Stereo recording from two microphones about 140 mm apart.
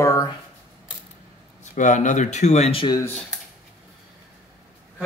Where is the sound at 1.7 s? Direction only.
60° left (ahead or behind).